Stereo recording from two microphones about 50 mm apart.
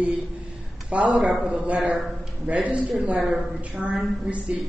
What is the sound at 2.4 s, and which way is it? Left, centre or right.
A man's voice, right.